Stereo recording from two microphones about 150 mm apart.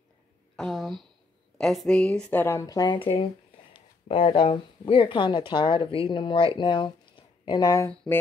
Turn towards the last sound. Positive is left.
turn(degrees=20)  # may be behind; listen again after turning